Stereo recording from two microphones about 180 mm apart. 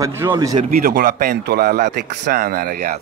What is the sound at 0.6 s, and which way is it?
A man's voice, 50° right (ahead or behind).